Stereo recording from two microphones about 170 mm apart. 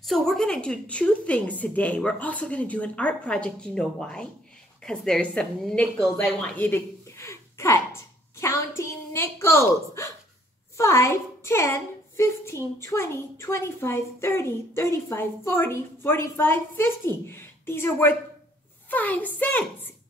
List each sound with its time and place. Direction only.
0.0 s a woman's voice: centre (ahead or behind)